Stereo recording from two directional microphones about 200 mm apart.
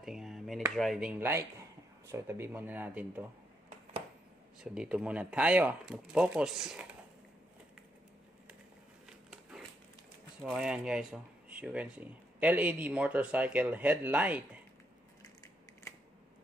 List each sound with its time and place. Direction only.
0.0 s chop: centre (ahead or behind)
0.7 s speech: centre (ahead or behind)
4.6 s speech: 5° right (ahead or behind)
10.4 s speech: 5° right (ahead or behind)